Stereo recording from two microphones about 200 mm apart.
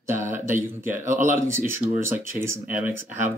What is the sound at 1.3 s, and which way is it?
Speech, 10° right (ahead or behind).